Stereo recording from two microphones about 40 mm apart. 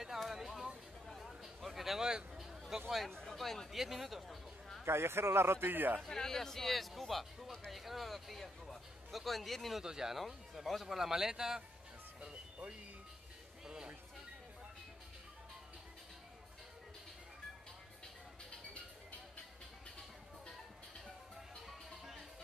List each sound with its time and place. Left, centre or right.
0.2 s a sound: centre
2.7 s speech: centre
3.3 s speech: centre
4.8 s a man's voice: right
5.7 s a man's voice: right
5.9 s speech: centre
9.8 s speech: centre
10.1 s speech: centre
21.6 s music: centre